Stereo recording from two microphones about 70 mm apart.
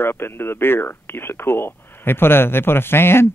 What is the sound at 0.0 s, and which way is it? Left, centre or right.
Speech, left.